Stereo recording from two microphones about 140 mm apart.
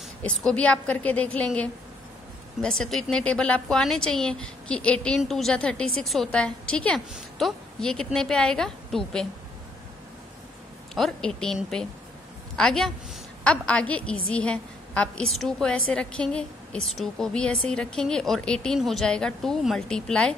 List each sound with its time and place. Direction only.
0.2 s a woman's voice: 5° left (ahead or behind)
11.0 s a woman's voice: 5° left (ahead or behind)